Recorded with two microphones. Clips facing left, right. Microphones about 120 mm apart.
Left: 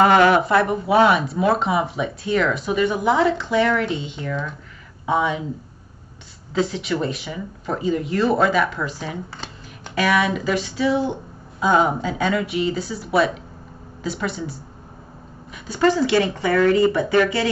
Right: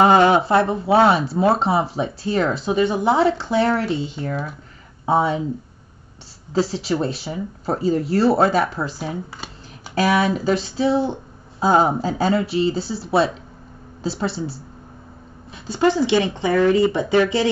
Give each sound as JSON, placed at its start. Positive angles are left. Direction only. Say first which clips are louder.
{"t": 0.0, "sound": "speech", "louder": "right 1 dB", "side_deg": -25}
{"t": 6.5, "sound": "speech", "louder": "right 1 dB", "side_deg": -35}
{"t": 9.9, "sound": "speech", "louder": "right 1 dB", "side_deg": -35}
{"t": 15.5, "sound": "a sound", "louder": "right 2 dB", "side_deg": -30}
{"t": 15.8, "sound": "speech", "louder": "even", "side_deg": -20}